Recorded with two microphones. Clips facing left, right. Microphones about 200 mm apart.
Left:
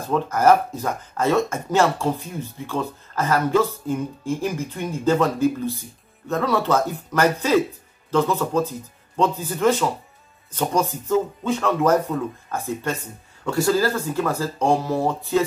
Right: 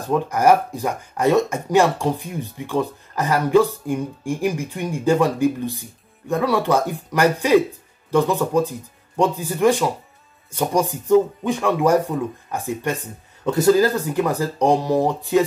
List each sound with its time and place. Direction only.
0.0 s speech: 15° right (ahead or behind)